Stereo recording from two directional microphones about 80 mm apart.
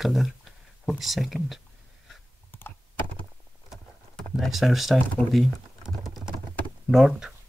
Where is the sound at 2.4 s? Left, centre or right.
Left.